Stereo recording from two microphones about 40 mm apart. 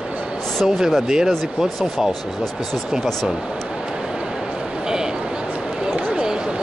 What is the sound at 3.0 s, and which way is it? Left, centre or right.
Speech, centre.